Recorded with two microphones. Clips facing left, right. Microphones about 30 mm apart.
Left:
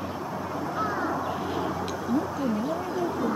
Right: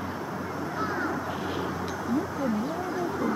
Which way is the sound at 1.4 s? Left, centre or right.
Centre.